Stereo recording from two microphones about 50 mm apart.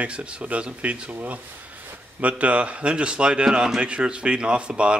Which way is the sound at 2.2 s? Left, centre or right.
Right.